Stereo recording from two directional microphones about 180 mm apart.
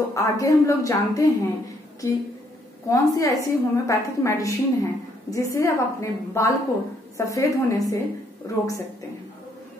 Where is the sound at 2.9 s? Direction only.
20° left (ahead or behind).